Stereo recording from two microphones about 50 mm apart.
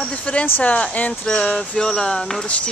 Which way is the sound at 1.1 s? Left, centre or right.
Centre.